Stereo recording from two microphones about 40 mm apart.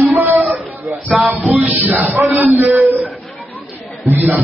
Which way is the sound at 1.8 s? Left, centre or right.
Right.